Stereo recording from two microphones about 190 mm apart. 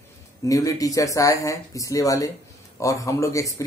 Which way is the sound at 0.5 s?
20° left (ahead or behind).